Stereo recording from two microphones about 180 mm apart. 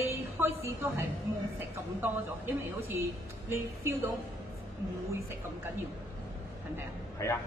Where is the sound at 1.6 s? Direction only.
10° right (ahead or behind).